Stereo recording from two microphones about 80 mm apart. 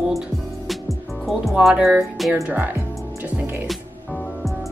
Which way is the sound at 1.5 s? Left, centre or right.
Centre.